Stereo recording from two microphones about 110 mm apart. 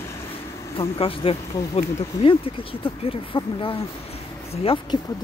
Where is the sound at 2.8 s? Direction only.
50° left (ahead or behind).